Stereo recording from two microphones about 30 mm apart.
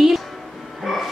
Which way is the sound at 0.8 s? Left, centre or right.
Centre.